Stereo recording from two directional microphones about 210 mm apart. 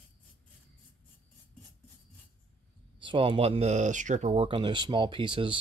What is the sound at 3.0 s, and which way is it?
Speech, 25° right (ahead or behind).